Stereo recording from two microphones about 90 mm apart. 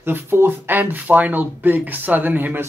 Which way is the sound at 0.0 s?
25° right (ahead or behind).